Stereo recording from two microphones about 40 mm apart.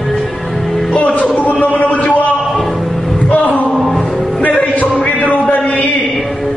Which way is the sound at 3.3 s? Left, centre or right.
Left.